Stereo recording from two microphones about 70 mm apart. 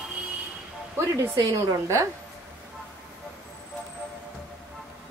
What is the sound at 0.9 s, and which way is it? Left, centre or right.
Speech, right.